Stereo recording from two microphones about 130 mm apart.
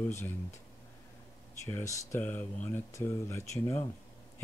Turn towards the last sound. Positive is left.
turn(degrees=20)  # may be behind; listen again after turning